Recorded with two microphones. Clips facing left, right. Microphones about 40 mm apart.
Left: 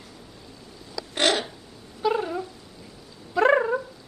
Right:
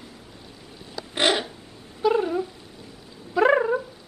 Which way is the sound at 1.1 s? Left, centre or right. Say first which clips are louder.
Right 1 dB; centre.